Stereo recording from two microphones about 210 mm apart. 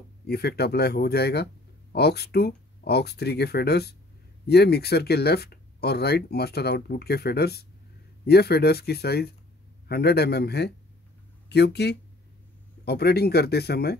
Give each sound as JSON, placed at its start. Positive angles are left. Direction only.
{"t": 0.3, "sound": "speech", "side_deg": 50}